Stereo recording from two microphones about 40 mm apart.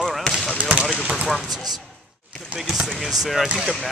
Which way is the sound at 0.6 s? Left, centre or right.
Right.